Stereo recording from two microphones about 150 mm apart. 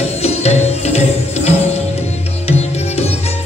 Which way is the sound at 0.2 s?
45° left (ahead or behind).